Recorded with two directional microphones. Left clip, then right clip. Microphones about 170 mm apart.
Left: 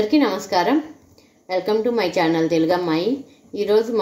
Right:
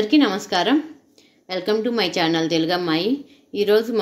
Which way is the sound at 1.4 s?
40° right (ahead or behind).